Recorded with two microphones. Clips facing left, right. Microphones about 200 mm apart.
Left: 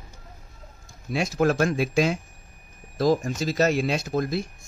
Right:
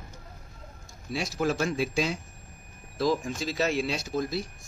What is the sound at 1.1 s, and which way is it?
Speech, 55° left (ahead or behind).